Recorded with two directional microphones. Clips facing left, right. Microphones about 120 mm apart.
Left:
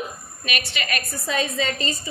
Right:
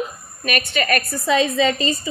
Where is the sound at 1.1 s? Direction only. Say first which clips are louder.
Right 6 dB; 90° right.